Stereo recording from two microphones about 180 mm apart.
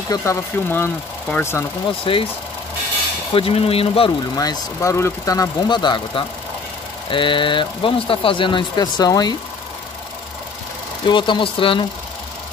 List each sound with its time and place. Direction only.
0.1 s speech: 15° left (ahead or behind)
2.1 s speech: 30° left (ahead or behind)
3.3 s speech: 30° left (ahead or behind)
11.1 s speech: 25° left (ahead or behind)